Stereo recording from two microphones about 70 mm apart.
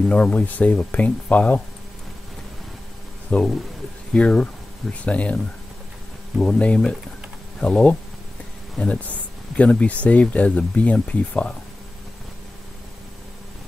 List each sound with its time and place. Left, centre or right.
0.1 s speech: centre
3.3 s speech: left
6.4 s speech: centre